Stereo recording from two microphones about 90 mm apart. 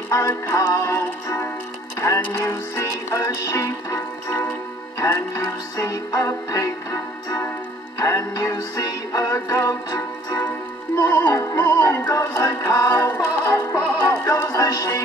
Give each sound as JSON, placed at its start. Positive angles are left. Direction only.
{"t": 0.1, "sound": "synthetic singing", "side_deg": 35}
{"t": 2.0, "sound": "speech", "side_deg": 35}
{"t": 2.3, "sound": "synthetic singing", "side_deg": 35}
{"t": 8.0, "sound": "music", "side_deg": 40}
{"t": 12.1, "sound": "synthetic singing", "side_deg": 40}
{"t": 13.1, "sound": "music", "side_deg": 30}